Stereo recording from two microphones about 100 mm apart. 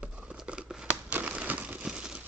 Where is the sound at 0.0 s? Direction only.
10° right (ahead or behind).